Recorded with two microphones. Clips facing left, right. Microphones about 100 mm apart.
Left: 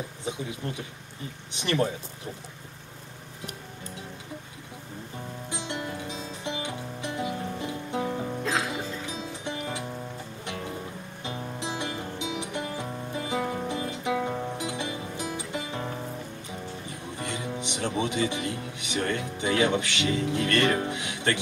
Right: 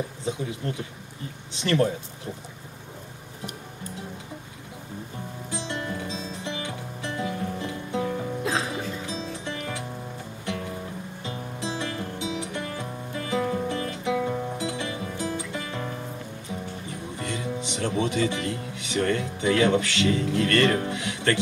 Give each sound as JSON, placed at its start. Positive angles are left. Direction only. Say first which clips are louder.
{"t": 1.6, "sound": "speech", "louder": "right 3 dB", "side_deg": 20}
{"t": 5.5, "sound": "music", "louder": "right 3 dB", "side_deg": 15}
{"t": 8.5, "sound": "music", "louder": "right 1 dB", "side_deg": -20}
{"t": 9.0, "sound": "music", "louder": "right 2 dB", "side_deg": 20}
{"t": 11.2, "sound": "music", "louder": "even", "side_deg": 20}
{"t": 17.2, "sound": "music", "louder": "right 2 dB", "side_deg": 20}